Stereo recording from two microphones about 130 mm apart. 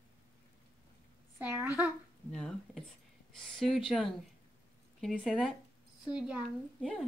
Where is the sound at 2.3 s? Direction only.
5° left (ahead or behind).